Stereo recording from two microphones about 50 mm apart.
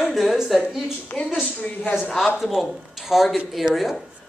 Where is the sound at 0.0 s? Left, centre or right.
Centre.